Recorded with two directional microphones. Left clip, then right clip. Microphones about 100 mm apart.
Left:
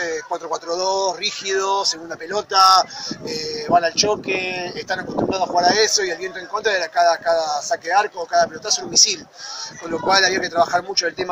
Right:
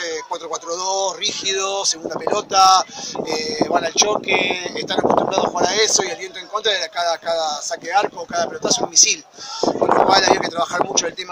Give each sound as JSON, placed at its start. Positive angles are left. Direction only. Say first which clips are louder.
{"t": 0.0, "sound": "speech", "louder": "left 1 dB", "side_deg": -15}